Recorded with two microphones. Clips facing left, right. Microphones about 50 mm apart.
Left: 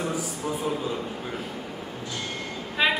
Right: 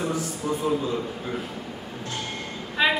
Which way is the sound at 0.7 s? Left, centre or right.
Centre.